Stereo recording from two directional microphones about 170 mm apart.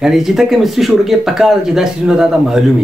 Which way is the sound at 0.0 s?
Centre (ahead or behind).